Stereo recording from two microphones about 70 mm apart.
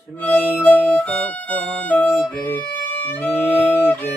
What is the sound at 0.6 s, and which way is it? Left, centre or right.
Violin, left.